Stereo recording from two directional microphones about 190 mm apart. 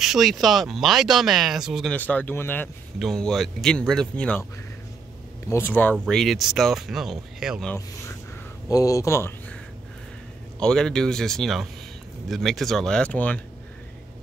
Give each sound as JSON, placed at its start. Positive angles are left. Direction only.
{"t": 0.0, "sound": "speech", "side_deg": 0}
{"t": 5.5, "sound": "speech", "side_deg": 10}
{"t": 8.6, "sound": "speech", "side_deg": 15}
{"t": 10.6, "sound": "speech", "side_deg": 5}